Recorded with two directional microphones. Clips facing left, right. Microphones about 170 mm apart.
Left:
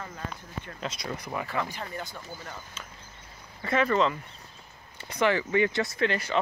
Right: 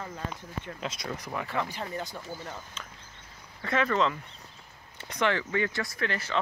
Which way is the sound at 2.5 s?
5° left (ahead or behind).